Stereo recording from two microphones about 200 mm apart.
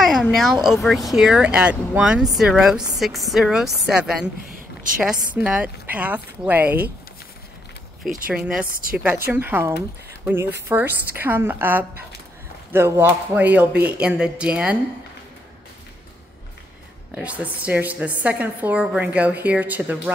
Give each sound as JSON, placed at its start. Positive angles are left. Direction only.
{"t": 0.0, "sound": "speech", "side_deg": 0}
{"t": 4.5, "sound": "a sound", "side_deg": -45}
{"t": 4.9, "sound": "speech", "side_deg": -5}
{"t": 8.3, "sound": "speech", "side_deg": -5}
{"t": 8.6, "sound": "a woman's voice", "side_deg": -45}
{"t": 8.9, "sound": "speech", "side_deg": -10}
{"t": 17.1, "sound": "speech", "side_deg": -5}